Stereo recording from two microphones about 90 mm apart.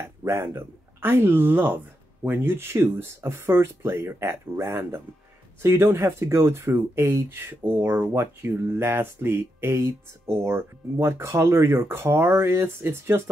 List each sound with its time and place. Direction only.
0.0 s speech: 30° right (ahead or behind)